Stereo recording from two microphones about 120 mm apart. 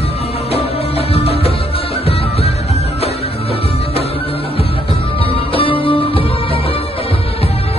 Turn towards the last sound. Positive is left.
turn(degrees=50)  # may be behind; listen again after turning